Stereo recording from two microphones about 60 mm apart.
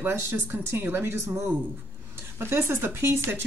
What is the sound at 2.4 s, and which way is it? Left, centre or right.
Speech, right.